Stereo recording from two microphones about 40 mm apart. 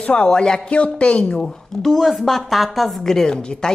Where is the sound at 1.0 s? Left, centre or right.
Left.